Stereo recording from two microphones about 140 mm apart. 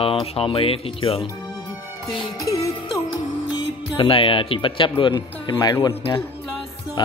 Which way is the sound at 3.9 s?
40° left (ahead or behind).